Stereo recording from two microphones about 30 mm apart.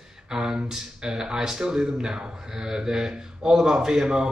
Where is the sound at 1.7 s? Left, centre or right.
Right.